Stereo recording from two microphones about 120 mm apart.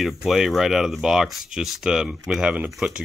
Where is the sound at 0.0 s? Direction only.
Centre (ahead or behind).